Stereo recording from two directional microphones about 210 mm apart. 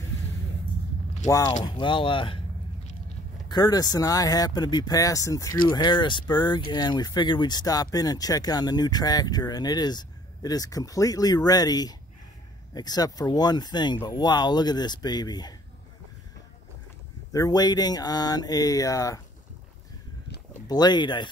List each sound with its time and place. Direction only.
1.2 s speech: 15° left (ahead or behind)
3.4 s speech: 20° left (ahead or behind)
17.3 s speech: 15° left (ahead or behind)
20.6 s speech: 20° left (ahead or behind)